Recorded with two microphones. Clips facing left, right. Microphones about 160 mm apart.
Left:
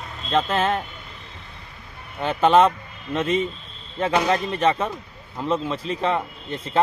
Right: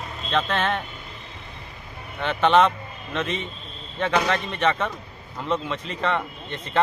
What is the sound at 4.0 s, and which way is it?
Speech, 10° left (ahead or behind).